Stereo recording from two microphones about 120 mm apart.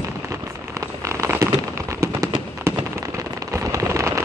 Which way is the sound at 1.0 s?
25° right (ahead or behind).